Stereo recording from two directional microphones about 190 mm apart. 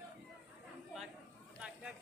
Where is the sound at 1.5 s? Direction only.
5° right (ahead or behind).